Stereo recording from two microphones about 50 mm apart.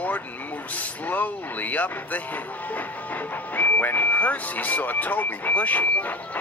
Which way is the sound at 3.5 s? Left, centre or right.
Left.